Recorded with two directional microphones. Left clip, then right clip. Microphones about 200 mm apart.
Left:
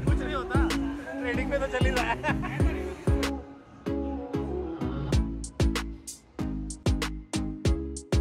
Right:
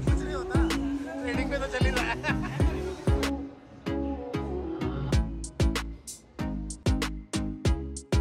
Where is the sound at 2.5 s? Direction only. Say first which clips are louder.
Even; centre (ahead or behind).